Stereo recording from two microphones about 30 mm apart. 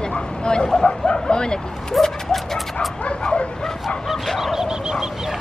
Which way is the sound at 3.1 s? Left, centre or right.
Left.